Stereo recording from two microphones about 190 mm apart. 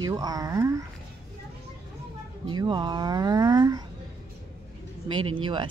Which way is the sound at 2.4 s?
25° right (ahead or behind).